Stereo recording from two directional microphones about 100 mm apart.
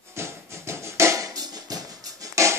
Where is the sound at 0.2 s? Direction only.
25° right (ahead or behind).